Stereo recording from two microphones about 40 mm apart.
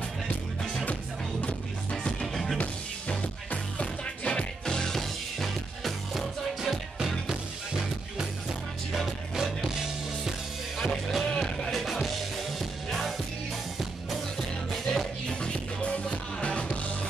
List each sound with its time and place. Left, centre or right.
1.4 s music: left; by 6.2 s centre
6.6 s music: centre
9.3 s music: centre
10.8 s music: centre
11.2 s music: centre
11.7 s music: centre
14.9 s music: centre
15.5 s music: left